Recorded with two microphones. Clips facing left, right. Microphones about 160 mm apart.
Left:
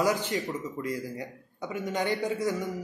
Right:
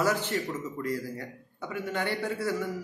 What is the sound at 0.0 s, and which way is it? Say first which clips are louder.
A man's voice: left 1 dB; 15° left (ahead or behind).